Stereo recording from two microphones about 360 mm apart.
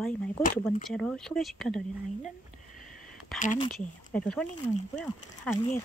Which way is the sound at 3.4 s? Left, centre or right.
Left.